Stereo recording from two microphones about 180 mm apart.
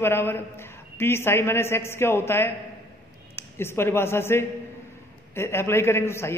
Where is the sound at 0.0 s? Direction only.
15° left (ahead or behind).